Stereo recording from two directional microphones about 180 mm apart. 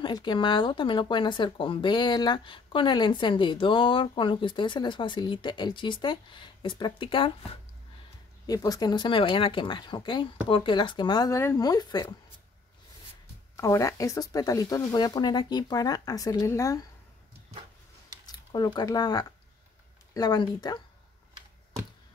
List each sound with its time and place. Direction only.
0.0 s speech: 25° left (ahead or behind)
8.5 s speech: 20° left (ahead or behind)
13.6 s speech: 15° left (ahead or behind)
18.2 s speech: 20° left (ahead or behind)